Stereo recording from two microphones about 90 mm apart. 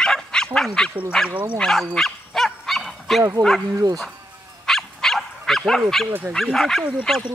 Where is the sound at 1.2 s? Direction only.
15° right (ahead or behind).